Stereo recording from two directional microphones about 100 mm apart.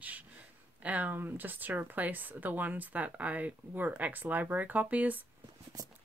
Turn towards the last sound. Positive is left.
turn(degrees=-15)  # may be behind; listen again after turning